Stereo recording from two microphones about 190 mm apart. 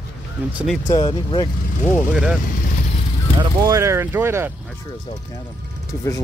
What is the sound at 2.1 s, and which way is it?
Speech, 5° right (ahead or behind).